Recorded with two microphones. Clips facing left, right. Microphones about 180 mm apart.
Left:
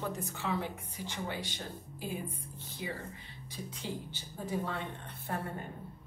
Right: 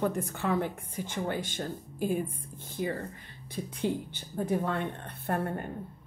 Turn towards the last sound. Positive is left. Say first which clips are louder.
# right 7 dB
turn(degrees=-60)  # may be behind; listen again after turning